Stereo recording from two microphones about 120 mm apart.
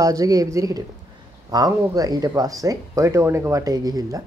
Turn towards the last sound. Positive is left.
turn(degrees=-30)  # may be behind; listen again after turning